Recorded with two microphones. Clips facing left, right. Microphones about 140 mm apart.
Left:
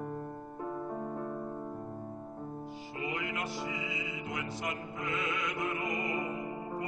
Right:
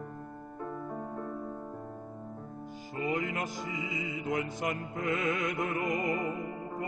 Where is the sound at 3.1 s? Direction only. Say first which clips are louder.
Right 4 dB; 45° right (ahead or behind).